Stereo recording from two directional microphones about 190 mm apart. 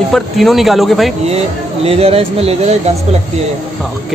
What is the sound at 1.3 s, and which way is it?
Speech, 30° right (ahead or behind).